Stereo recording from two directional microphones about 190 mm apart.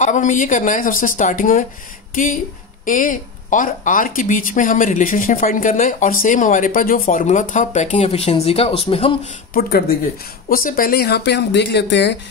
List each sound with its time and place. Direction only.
0.0 s speech: 40° left (ahead or behind)
9.5 s speech: 55° left (ahead or behind)